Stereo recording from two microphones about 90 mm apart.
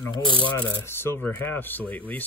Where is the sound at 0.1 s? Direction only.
65° left (ahead or behind).